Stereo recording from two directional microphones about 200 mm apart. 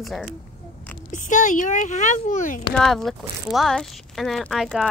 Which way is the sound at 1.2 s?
40° left (ahead or behind).